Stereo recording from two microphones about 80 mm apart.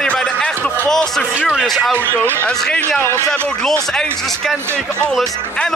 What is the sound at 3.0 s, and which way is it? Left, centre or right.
Speech, left.